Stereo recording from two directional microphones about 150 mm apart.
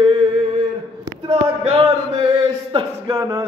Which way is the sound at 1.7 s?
35° right (ahead or behind).